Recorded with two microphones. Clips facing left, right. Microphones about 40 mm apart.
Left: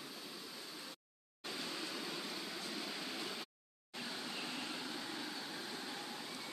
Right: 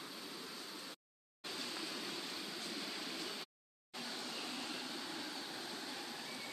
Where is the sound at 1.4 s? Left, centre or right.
Centre.